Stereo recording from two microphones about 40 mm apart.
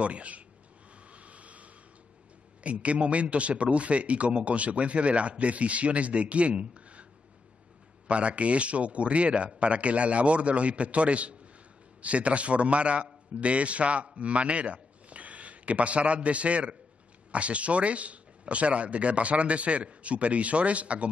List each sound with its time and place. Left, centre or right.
0.0 s a man's voice: right
1.1 s vehicle: right
2.6 s a man's voice: right
8.1 s a man's voice: right